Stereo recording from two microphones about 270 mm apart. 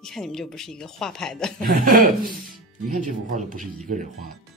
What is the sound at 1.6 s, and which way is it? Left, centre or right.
Chuckle, right.